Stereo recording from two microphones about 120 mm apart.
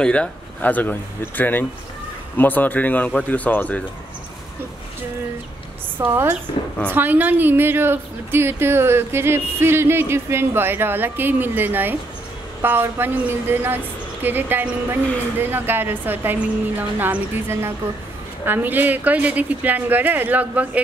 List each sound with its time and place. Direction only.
0.0 s speech: 10° left (ahead or behind)
5.9 s a woman's voice: 15° right (ahead or behind)